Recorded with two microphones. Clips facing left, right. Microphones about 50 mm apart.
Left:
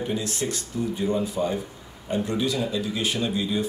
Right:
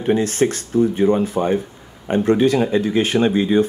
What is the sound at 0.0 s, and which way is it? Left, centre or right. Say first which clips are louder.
Speech: right 10 dB; right.